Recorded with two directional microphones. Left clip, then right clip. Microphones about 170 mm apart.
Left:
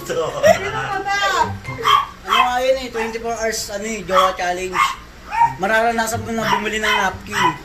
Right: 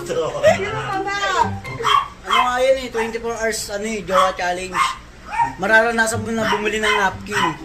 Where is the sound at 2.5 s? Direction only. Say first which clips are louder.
Right 1 dB; 25° right (ahead or behind).